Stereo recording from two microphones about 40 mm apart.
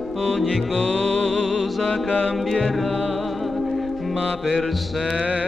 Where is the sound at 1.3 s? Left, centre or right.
Centre.